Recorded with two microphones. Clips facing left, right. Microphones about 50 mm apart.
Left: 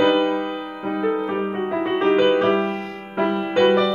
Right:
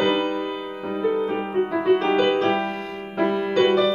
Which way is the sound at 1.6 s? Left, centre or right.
Centre.